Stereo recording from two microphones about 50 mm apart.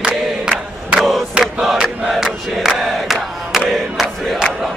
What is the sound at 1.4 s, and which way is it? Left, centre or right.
Crowd, centre.